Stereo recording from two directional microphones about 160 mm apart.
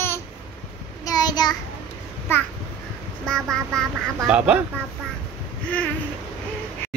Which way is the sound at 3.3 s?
5° left (ahead or behind).